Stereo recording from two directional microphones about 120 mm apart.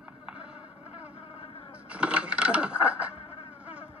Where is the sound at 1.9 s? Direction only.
10° right (ahead or behind).